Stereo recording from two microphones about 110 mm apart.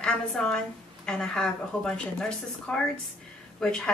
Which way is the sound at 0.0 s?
5° left (ahead or behind).